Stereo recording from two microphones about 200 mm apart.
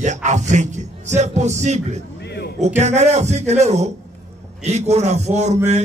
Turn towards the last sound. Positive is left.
turn(degrees=-35)  # may be behind; listen again after turning